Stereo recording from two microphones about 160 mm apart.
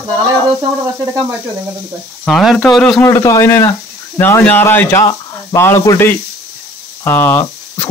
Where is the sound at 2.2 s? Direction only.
Centre (ahead or behind).